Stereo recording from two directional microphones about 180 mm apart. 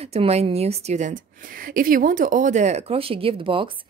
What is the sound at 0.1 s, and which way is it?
Speech, 35° right (ahead or behind).